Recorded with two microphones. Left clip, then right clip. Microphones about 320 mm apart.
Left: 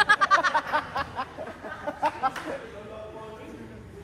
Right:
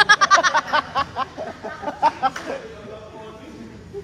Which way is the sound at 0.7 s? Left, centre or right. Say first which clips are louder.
Right 7 dB; right.